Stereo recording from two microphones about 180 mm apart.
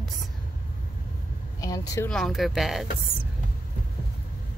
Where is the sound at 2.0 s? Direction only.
Centre (ahead or behind).